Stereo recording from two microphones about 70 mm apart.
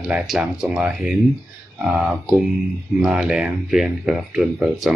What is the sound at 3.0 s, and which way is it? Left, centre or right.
Speech, centre.